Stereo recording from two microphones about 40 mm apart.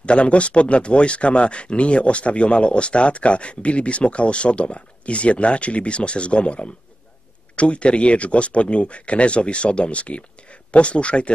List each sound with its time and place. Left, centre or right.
0.0 s speech: left